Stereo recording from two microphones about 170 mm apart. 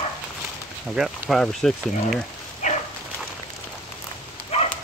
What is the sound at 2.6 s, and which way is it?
Dog, 45° left (ahead or behind).